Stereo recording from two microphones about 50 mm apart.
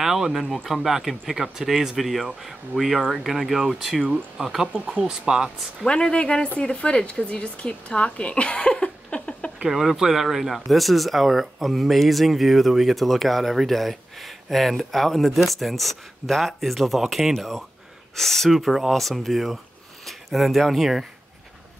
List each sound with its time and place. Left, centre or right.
0.0 s speech: centre
5.0 s speech: centre
5.9 s speech: centre
9.7 s speech: centre